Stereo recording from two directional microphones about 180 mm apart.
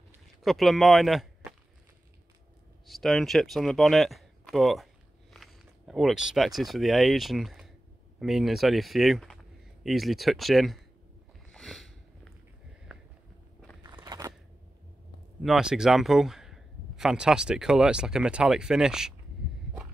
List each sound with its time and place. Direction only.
0.4 s speech: centre (ahead or behind)
2.9 s speech: centre (ahead or behind)
11.5 s a sound: centre (ahead or behind)
13.8 s scissors: 20° right (ahead or behind)
15.4 s speech: 5° right (ahead or behind)